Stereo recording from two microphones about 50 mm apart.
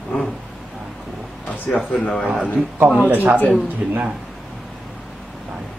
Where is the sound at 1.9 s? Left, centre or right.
Centre.